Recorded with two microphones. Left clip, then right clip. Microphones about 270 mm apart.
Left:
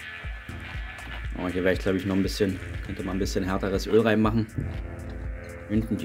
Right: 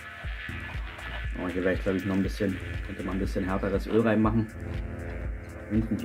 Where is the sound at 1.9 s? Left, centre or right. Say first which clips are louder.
Left 3 dB; left.